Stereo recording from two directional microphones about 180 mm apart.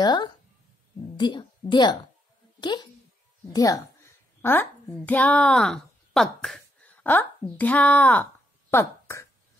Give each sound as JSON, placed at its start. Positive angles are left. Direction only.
{"t": 0.0, "sound": "a woman's voice", "side_deg": 25}